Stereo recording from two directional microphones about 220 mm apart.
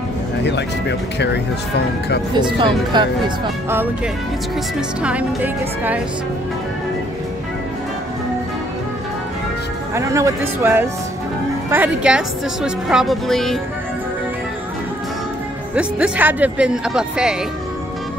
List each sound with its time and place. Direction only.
0.4 s speech: 50° left (ahead or behind)
2.3 s speech: 20° right (ahead or behind)
4.7 s speech: 5° right (ahead or behind)
9.9 s a woman's voice: 15° right (ahead or behind); by 13.6 s centre (ahead or behind)
15.7 s a woman's voice: 5° right (ahead or behind)